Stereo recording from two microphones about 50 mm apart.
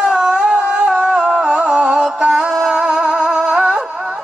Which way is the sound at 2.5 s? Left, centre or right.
Centre.